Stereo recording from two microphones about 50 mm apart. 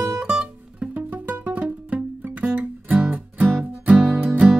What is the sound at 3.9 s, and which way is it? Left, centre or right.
Music, centre.